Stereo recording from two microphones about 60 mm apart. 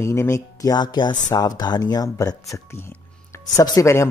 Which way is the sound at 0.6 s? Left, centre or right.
Left.